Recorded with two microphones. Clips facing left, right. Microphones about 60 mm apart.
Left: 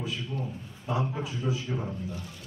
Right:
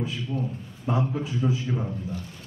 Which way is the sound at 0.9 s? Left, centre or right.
Right.